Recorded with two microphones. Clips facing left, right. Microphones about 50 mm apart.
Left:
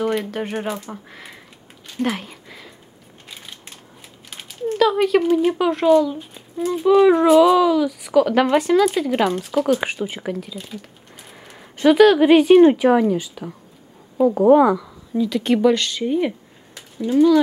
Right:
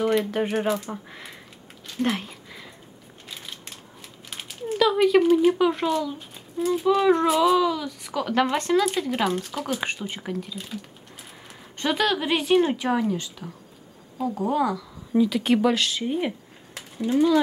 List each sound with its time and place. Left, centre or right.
0.3 s speech: centre
2.0 s a sound: centre
4.3 s speech: centre
11.5 s a sound: centre
12.2 s a woman's voice: centre
15.1 s speech: centre
17.1 s speech: centre